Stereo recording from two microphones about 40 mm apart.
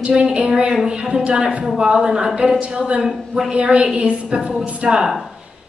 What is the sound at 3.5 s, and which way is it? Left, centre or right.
Speech, right.